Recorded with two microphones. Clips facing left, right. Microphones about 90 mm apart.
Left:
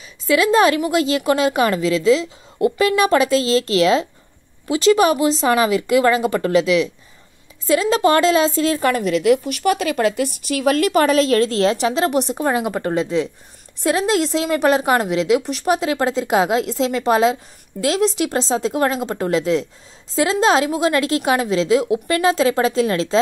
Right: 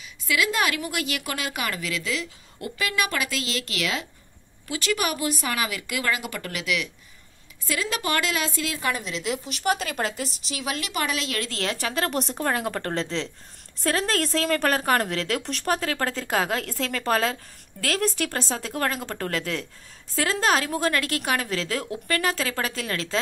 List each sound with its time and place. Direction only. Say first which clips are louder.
0.3 s a woman's voice: left 10 dB; 30° left (ahead or behind)
8.7 s a woman's voice: left 10 dB; 55° left (ahead or behind); by 23.1 s 25° left (ahead or behind)